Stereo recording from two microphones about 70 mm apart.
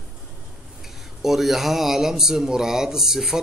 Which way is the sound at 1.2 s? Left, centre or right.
Centre.